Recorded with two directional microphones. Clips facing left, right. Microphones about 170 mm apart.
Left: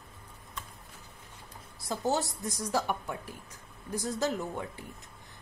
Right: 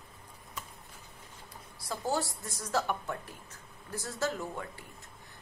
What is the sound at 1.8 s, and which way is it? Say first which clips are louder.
A woman's voice: left 3 dB; 20° left (ahead or behind).